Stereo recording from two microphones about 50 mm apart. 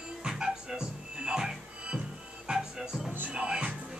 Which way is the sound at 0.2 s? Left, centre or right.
Centre.